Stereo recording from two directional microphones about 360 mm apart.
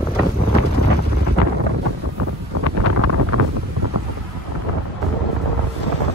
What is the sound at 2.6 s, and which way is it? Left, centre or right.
Vehicle, right.